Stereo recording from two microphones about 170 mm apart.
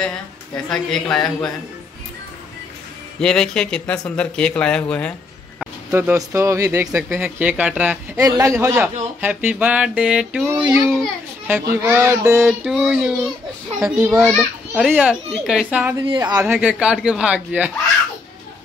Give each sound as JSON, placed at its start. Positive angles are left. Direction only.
{"t": 0.7, "sound": "speech", "side_deg": 5}
{"t": 3.2, "sound": "speech", "side_deg": 5}
{"t": 5.9, "sound": "speech", "side_deg": -15}
{"t": 8.2, "sound": "speech", "side_deg": -20}
{"t": 12.6, "sound": "speech", "side_deg": 0}
{"t": 16.1, "sound": "speech", "side_deg": -25}
{"t": 16.4, "sound": "speech", "side_deg": -5}